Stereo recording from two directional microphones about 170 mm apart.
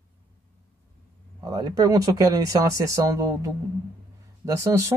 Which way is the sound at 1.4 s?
20° right (ahead or behind).